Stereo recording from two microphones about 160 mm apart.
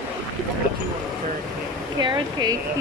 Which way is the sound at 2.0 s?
25° right (ahead or behind).